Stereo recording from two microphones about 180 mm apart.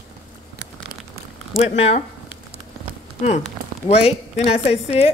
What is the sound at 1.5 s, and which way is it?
Speech, 35° left (ahead or behind).